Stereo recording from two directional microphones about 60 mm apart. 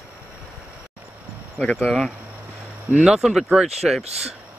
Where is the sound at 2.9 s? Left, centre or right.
Centre.